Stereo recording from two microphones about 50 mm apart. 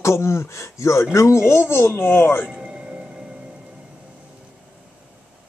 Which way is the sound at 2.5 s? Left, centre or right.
Centre.